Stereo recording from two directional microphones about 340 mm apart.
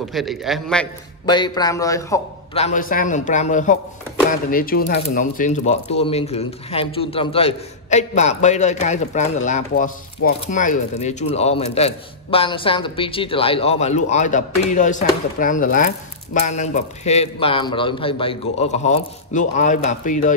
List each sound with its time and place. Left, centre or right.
0.1 s a man's voice: centre
1.2 s speech: centre